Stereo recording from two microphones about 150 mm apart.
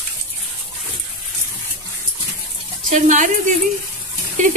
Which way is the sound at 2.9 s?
60° right (ahead or behind).